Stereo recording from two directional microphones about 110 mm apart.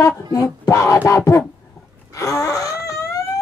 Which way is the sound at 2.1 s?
30° left (ahead or behind).